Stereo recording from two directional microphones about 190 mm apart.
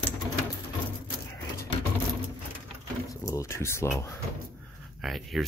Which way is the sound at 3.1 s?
15° left (ahead or behind).